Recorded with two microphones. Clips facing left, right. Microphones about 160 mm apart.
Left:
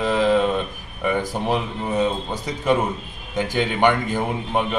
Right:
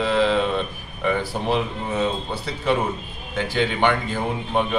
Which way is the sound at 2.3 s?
15° left (ahead or behind).